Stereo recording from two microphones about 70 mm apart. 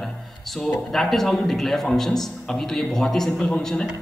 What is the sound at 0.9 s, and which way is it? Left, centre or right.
A man's voice, centre.